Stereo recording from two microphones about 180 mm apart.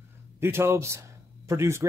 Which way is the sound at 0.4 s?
15° right (ahead or behind).